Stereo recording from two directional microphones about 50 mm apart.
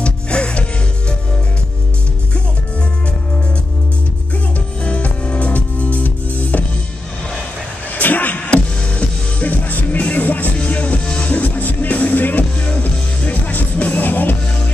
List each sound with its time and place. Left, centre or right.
0.0 s music: left
4.8 s music: left
7.9 s music: left